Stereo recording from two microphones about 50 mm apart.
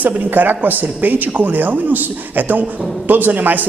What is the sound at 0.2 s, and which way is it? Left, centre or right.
A woman's voice, right.